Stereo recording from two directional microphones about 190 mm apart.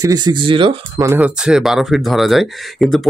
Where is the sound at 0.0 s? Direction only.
20° right (ahead or behind).